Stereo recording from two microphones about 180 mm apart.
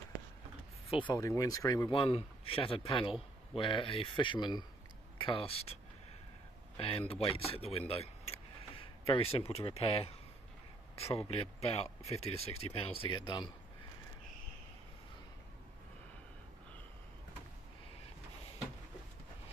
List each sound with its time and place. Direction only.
1.1 s speech: 20° left (ahead or behind); by 5.8 s 35° left (ahead or behind)
6.8 s speech: 30° left (ahead or behind)
7.9 s a sound: 35° left (ahead or behind)
11.0 s speech: 35° left (ahead or behind)